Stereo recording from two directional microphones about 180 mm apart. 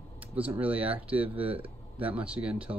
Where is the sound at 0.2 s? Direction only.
10° right (ahead or behind).